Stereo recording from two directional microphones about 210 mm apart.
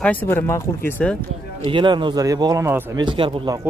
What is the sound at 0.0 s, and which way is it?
Speech, 10° left (ahead or behind).